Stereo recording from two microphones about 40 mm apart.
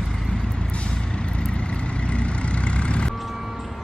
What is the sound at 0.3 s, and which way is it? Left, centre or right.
Vehicle, left.